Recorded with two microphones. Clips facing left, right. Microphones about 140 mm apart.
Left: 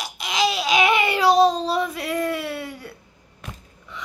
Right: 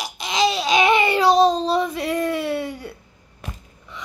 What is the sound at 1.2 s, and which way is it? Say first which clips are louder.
Child singing: left 1 dB; 5° left (ahead or behind).